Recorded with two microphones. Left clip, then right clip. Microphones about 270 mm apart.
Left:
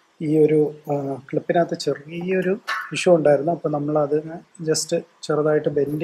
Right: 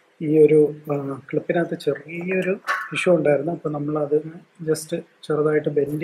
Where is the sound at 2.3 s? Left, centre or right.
Left.